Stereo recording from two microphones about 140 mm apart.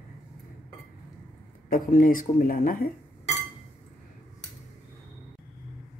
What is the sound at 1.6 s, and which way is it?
Speech, 80° left.